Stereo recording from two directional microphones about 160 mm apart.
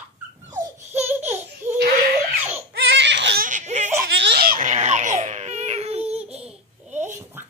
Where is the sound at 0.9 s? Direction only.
10° right (ahead or behind).